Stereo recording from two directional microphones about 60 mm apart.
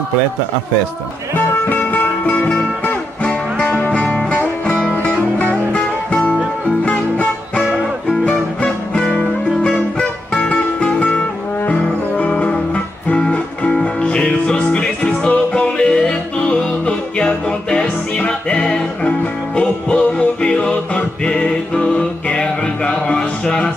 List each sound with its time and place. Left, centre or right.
1.7 s music: left
2.5 s music: centre